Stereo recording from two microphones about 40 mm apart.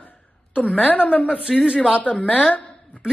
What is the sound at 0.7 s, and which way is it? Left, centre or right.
Speech, left.